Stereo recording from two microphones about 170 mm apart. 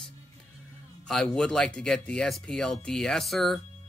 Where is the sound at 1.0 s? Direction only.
5° left (ahead or behind).